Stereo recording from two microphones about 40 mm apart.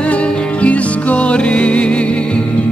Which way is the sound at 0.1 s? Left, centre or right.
Left.